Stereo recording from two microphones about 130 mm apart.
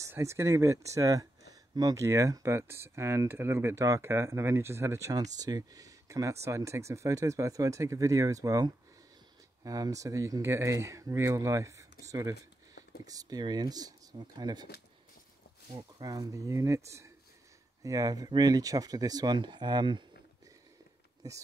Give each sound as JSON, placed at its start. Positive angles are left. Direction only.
{"t": 0.0, "sound": "speech", "side_deg": -20}
{"t": 15.7, "sound": "speech", "side_deg": -30}
{"t": 17.8, "sound": "speech", "side_deg": -30}
{"t": 21.2, "sound": "speech", "side_deg": -30}